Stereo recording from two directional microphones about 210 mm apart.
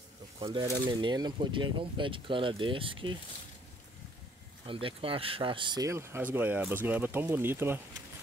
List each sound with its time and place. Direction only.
0.4 s speech: 20° right (ahead or behind)
4.6 s speech: 25° right (ahead or behind)